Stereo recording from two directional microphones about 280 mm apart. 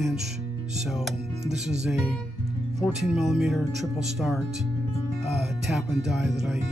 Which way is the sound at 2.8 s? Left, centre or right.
Centre.